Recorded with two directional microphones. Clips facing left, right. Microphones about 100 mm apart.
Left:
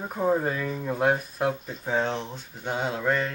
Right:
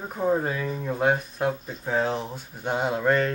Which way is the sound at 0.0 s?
Centre (ahead or behind).